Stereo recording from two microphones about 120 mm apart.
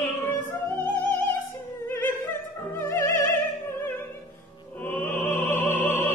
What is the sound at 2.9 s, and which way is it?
Opera, 20° left (ahead or behind).